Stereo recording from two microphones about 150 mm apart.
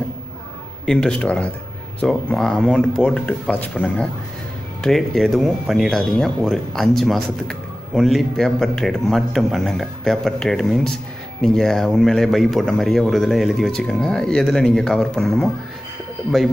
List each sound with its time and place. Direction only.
0.8 s speech: 5° left (ahead or behind)